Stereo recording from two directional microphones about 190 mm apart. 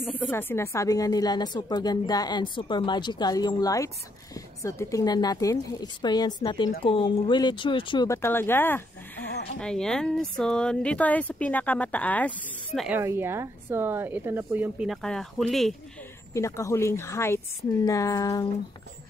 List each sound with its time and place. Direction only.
0.0 s speech: 10° left (ahead or behind)
12.8 s speech: 10° right (ahead or behind)
16.3 s a woman's voice: 15° left (ahead or behind)